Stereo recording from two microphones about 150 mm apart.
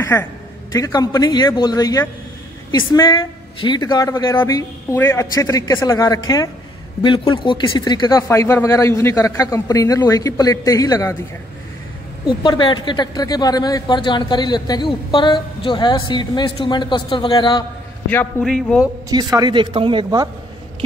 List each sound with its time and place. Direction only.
0.0 s speech: 15° left (ahead or behind)
12.3 s a woman's voice: 30° left (ahead or behind)
18.0 s a man's voice: 10° left (ahead or behind)
19.0 s speech: 25° right (ahead or behind)